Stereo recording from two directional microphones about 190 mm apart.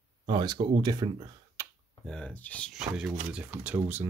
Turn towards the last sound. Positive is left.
turn(degrees=-10)  # may be behind; listen again after turning